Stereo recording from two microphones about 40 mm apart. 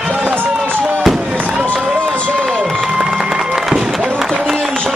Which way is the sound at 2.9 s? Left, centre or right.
Centre.